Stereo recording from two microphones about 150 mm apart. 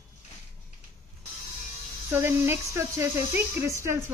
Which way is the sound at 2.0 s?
15° right (ahead or behind).